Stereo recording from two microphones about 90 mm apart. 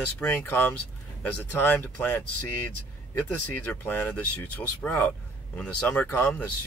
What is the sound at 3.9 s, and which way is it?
Speech, 15° left (ahead or behind).